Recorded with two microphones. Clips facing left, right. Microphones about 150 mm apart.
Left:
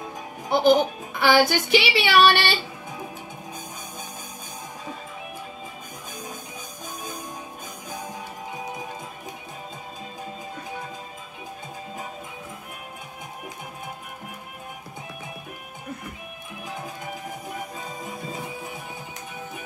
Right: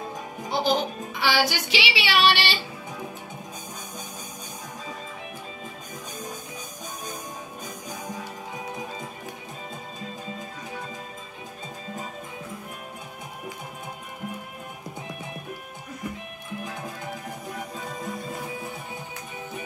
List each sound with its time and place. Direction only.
0.5 s music: 55° left (ahead or behind)